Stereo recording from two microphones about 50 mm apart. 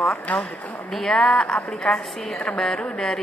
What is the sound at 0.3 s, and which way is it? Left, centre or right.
Speech, left.